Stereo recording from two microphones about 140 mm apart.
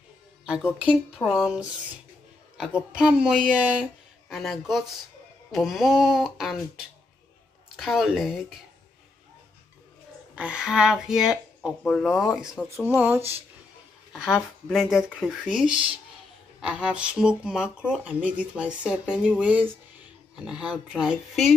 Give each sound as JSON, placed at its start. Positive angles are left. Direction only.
{"t": 0.7, "sound": "a woman's voice", "side_deg": -5}
{"t": 10.3, "sound": "a woman's voice", "side_deg": -5}
{"t": 12.8, "sound": "speech", "side_deg": -15}
{"t": 14.7, "sound": "a woman's voice", "side_deg": -5}